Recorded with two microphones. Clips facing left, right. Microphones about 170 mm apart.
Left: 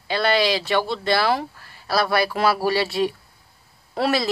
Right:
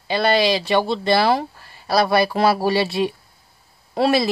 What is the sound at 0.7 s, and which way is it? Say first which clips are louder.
Speech: right 3 dB; 25° right (ahead or behind).